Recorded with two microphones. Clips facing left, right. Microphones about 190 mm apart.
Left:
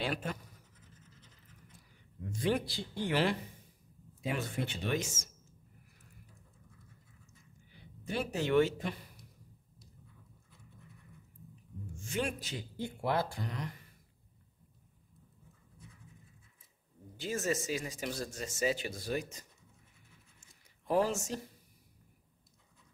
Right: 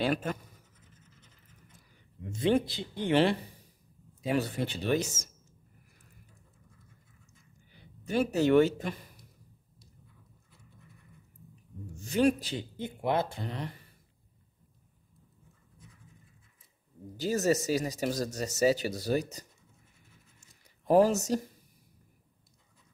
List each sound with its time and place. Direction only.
0.0 s speech: 45° right (ahead or behind)
2.3 s speech: 25° right (ahead or behind)
8.1 s speech: 40° right (ahead or behind)
11.9 s a man's voice: 35° right (ahead or behind)
12.7 s speech: 20° right (ahead or behind)
17.2 s speech: 40° right (ahead or behind)
20.3 s writing: 40° right (ahead or behind)